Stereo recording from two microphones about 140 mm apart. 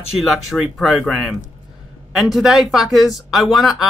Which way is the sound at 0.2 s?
Centre (ahead or behind).